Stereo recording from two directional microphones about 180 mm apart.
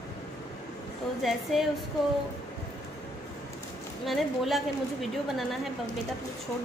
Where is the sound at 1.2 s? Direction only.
Centre (ahead or behind).